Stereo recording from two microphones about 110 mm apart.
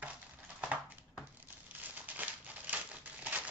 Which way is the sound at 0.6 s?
15° right (ahead or behind).